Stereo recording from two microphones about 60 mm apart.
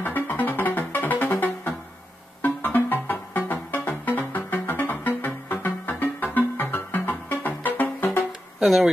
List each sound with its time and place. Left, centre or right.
0.0 s music: left
8.6 s speech: centre